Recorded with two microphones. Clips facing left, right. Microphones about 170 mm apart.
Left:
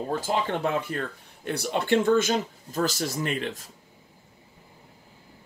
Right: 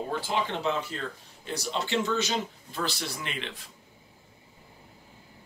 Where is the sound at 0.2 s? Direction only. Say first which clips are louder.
Left 3 dB; 45° left (ahead or behind).